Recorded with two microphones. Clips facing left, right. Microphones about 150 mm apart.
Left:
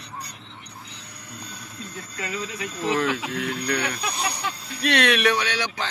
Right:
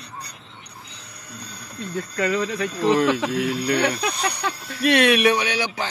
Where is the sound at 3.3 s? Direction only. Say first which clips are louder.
Right 5 dB; 10° right (ahead or behind).